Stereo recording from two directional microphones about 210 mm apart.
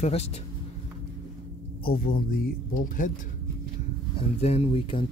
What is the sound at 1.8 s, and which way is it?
Speech, 45° left (ahead or behind).